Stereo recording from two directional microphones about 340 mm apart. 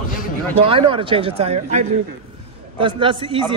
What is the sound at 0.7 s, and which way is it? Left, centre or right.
Speech, centre.